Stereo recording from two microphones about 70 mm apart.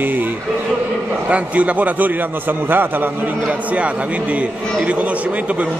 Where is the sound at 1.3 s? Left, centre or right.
Centre.